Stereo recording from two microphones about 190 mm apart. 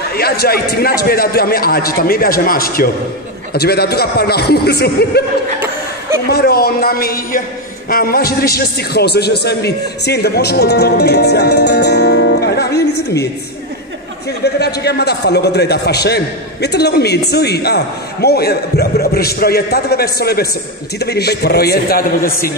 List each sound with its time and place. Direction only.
0.1 s a man's voice: 55° left (ahead or behind)
5.6 s chuckle: 15° right (ahead or behind)
6.2 s a man's voice: 55° left (ahead or behind)
14.4 s a man's voice: 60° left (ahead or behind)